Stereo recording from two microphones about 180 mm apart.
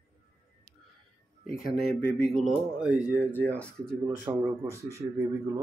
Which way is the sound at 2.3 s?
5° right (ahead or behind).